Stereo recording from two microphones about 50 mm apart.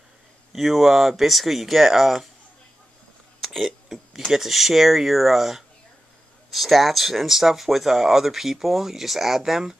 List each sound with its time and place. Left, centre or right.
0.5 s speech: centre
3.4 s a sound: centre
4.3 s speech: centre